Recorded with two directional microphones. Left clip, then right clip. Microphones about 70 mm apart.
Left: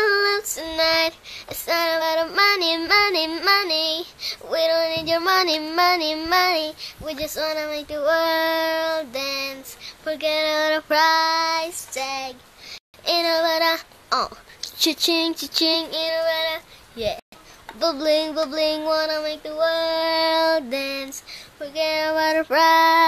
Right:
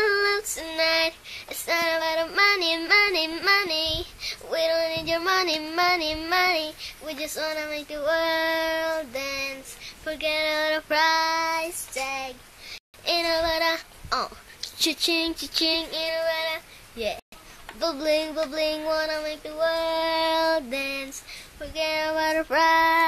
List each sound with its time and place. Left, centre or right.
0.0 s child singing: left
11.4 s child singing: centre
12.1 s speech: left
13.0 s child singing: left